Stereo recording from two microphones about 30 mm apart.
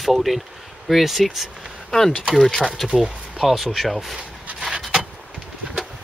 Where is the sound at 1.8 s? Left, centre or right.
Centre.